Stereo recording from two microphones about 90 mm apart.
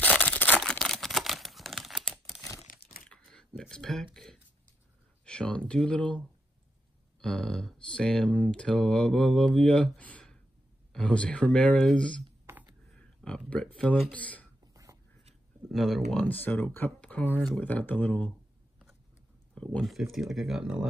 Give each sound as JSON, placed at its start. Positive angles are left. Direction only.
{"t": 0.2, "sound": "single-lens reflex camera", "side_deg": 15}
{"t": 0.6, "sound": "camera", "side_deg": 5}
{"t": 3.1, "sound": "a sound", "side_deg": 10}
{"t": 5.2, "sound": "speech", "side_deg": 10}
{"t": 12.5, "sound": "computer keyboard", "side_deg": -25}
{"t": 12.9, "sound": "a sound", "side_deg": 15}
{"t": 14.1, "sound": "speech", "side_deg": 15}
{"t": 14.7, "sound": "a sound", "side_deg": -40}
{"t": 15.7, "sound": "speech", "side_deg": 0}
{"t": 16.3, "sound": "speech", "side_deg": 20}
{"t": 19.5, "sound": "a sound", "side_deg": 15}
{"t": 19.8, "sound": "speech", "side_deg": 0}